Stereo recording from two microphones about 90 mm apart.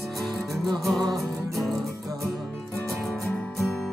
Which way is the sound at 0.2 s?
5° left (ahead or behind).